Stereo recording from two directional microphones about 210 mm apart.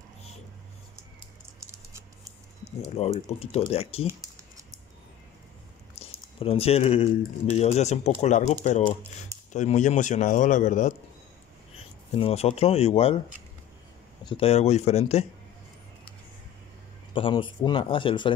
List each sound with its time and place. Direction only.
2.6 s speech: 30° left (ahead or behind)
5.9 s speech: 30° left (ahead or behind)
12.2 s speech: 30° left (ahead or behind)
14.2 s speech: 25° left (ahead or behind)
17.1 s speech: 25° left (ahead or behind)